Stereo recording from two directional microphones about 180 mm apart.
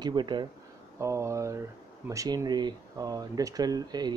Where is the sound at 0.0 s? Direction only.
25° right (ahead or behind).